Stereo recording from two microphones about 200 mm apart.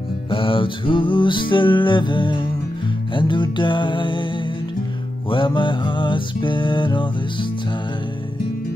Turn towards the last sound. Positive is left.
turn(degrees=25)  # may be behind; listen again after turning